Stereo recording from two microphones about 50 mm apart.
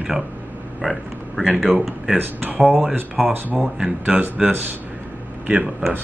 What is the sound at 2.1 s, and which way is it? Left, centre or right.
Speech, right.